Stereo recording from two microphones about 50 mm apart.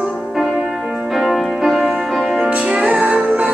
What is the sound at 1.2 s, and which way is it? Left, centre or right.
Music, centre.